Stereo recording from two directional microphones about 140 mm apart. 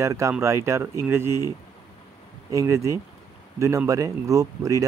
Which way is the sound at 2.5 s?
20° right (ahead or behind).